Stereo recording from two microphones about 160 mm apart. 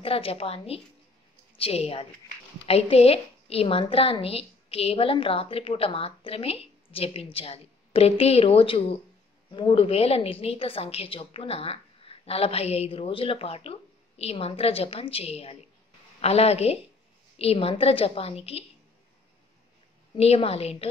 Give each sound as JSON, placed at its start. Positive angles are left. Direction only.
{"t": 0.0, "sound": "a woman's voice", "side_deg": 35}
{"t": 20.2, "sound": "a woman's voice", "side_deg": 40}